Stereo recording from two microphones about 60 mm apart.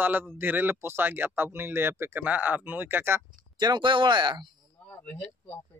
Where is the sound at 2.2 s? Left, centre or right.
Right.